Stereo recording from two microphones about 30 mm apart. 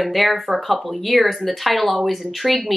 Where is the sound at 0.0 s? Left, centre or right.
Centre.